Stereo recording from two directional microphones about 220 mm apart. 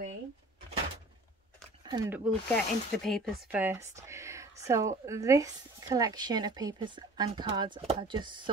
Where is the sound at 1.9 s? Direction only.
15° right (ahead or behind).